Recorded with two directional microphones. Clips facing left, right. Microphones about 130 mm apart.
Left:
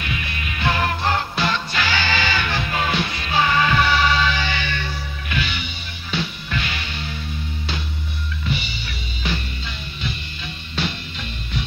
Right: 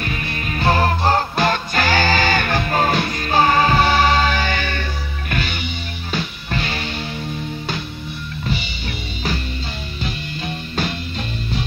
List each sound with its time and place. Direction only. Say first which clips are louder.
0.0 s music: right 3 dB; 40° right (ahead or behind)
10.4 s music: right 3 dB; 45° right (ahead or behind)